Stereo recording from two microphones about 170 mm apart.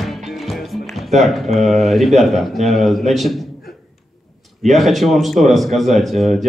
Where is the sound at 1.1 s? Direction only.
Centre (ahead or behind).